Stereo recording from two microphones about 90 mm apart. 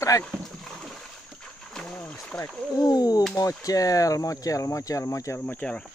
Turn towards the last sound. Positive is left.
turn(degrees=15)  # may be behind; listen again after turning